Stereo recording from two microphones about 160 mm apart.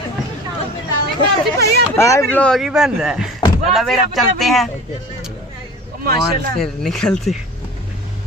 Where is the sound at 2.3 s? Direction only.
5° left (ahead or behind).